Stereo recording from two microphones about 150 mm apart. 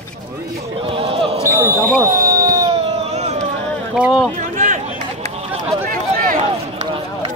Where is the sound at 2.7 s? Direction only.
40° right (ahead or behind).